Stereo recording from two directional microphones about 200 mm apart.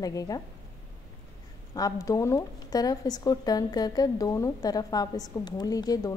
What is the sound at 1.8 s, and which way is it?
A woman's voice, 15° left (ahead or behind).